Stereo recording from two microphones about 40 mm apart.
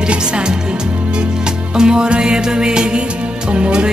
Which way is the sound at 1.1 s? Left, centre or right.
Right.